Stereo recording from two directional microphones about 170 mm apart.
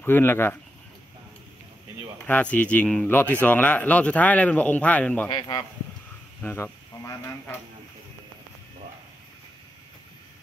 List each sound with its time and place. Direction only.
0.0 s speech: 15° left (ahead or behind)
2.2 s speech: 10° left (ahead or behind)
5.3 s a man's voice: 25° left (ahead or behind)